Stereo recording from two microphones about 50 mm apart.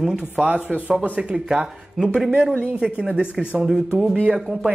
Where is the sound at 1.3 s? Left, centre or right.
Centre.